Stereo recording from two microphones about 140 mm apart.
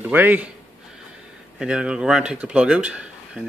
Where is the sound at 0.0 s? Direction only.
15° right (ahead or behind).